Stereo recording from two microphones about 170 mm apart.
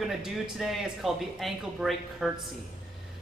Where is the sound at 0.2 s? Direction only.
Centre (ahead or behind).